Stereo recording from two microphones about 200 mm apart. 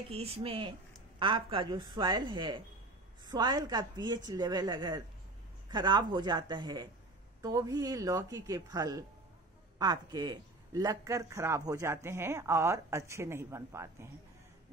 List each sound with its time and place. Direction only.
0.1 s a woman's voice: 30° right (ahead or behind); by 14.1 s 15° right (ahead or behind)